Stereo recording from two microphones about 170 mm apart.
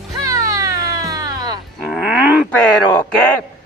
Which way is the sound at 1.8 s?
5° right (ahead or behind).